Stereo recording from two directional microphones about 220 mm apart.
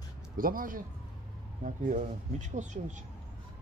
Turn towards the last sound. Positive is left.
turn(degrees=-35)  # may be behind; listen again after turning